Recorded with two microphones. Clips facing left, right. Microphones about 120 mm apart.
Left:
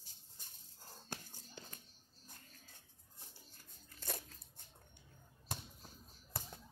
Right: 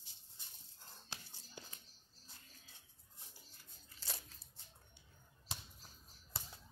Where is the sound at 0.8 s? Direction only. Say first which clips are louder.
Left 4 dB; 45° left (ahead or behind).